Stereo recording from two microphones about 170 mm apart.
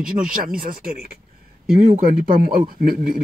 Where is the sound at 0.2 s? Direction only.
55° right (ahead or behind).